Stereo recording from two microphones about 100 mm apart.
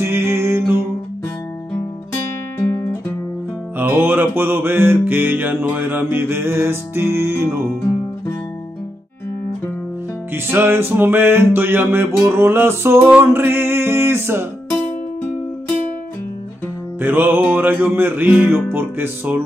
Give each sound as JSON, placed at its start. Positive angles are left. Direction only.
{"t": 0.0, "sound": "mantra", "side_deg": -25}
{"t": 3.7, "sound": "music", "side_deg": -20}
{"t": 10.3, "sound": "music", "side_deg": -20}
{"t": 17.0, "sound": "music", "side_deg": -20}